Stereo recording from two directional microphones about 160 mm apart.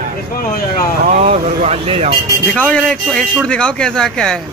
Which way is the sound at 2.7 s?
Centre (ahead or behind).